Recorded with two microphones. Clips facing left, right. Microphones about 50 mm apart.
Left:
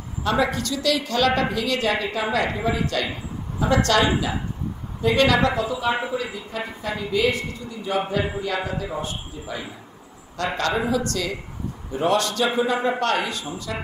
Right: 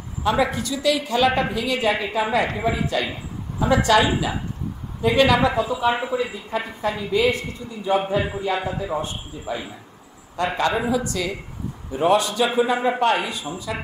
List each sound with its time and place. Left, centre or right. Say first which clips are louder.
0.2 s a woman's voice: right 1 dB; centre
6.1 s a woman's voice: right 3 dB; right; by 10.7 s centre
10.7 s a woman's voice: even; centre